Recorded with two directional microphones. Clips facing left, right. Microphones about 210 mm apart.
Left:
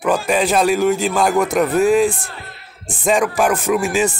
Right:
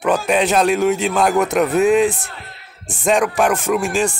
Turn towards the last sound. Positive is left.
turn(degrees=5)  # may be behind; listen again after turning